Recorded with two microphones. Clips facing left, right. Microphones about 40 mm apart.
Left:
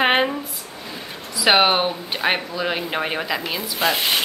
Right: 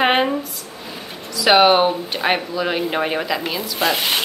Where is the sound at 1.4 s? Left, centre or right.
Centre.